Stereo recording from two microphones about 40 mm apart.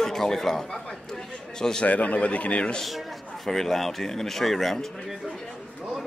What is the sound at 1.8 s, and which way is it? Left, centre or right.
Speech, left.